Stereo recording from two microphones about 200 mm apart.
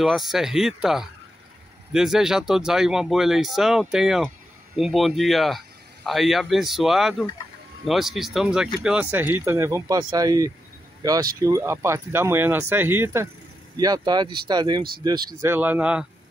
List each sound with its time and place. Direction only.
0.0 s speech: centre (ahead or behind)